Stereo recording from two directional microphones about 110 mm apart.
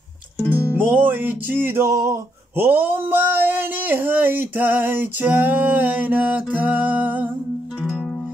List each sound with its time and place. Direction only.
0.5 s music: 15° right (ahead or behind)